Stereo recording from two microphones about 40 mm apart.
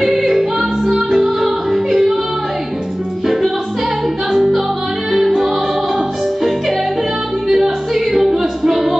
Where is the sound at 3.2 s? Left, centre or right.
Centre.